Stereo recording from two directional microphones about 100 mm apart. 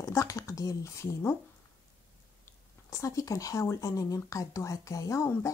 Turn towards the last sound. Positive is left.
turn(degrees=30)  # may be behind; listen again after turning